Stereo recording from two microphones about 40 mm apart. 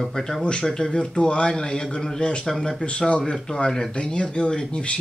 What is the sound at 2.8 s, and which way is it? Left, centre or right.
Speech, left.